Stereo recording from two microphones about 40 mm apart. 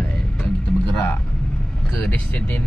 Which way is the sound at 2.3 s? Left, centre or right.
Left.